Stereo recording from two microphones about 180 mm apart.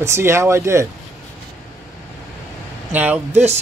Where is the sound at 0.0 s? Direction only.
15° right (ahead or behind).